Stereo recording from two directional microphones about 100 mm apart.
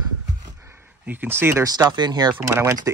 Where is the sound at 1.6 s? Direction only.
40° right (ahead or behind).